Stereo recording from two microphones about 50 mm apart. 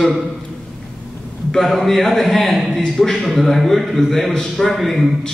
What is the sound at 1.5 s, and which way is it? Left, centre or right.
A man's voice, centre.